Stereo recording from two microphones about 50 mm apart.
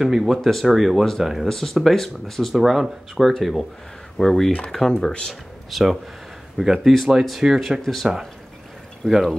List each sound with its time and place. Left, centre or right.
0.0 s speech: centre
1.5 s speech: centre
2.5 s speech: centre
9.0 s speech: centre